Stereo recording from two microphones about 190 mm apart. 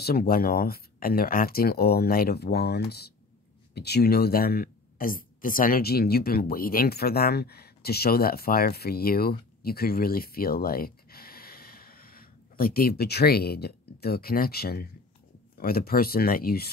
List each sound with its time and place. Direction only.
0.0 s speech: 50° left (ahead or behind)